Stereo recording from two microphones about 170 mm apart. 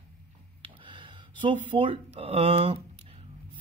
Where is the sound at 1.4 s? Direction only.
30° right (ahead or behind).